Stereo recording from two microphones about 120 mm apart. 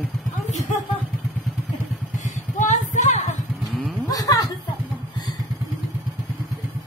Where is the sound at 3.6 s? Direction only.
Centre (ahead or behind).